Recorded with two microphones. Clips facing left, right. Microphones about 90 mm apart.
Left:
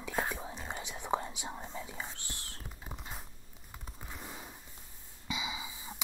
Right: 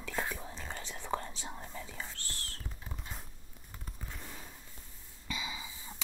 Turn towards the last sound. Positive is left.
turn(degrees=15)  # may be behind; listen again after turning